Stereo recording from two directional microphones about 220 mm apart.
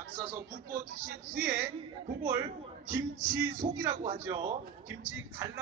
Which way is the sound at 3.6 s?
30° right (ahead or behind).